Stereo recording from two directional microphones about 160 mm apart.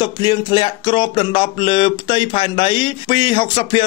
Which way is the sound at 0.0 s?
30° left (ahead or behind).